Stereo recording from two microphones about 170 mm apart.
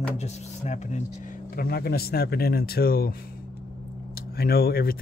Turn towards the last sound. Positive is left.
turn(degrees=60)  # may be behind; listen again after turning